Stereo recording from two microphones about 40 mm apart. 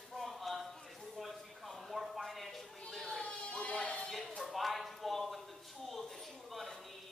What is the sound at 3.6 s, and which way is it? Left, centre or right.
Music, left.